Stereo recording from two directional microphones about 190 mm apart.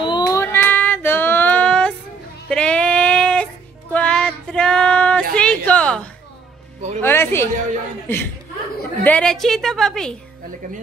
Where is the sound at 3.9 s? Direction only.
5° left (ahead or behind).